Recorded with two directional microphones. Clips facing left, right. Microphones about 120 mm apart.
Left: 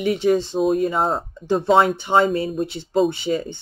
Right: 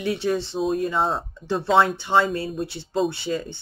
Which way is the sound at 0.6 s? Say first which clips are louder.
Left 2 dB; centre (ahead or behind).